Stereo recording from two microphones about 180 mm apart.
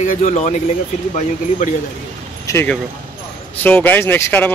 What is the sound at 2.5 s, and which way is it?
Speech, 15° left (ahead or behind).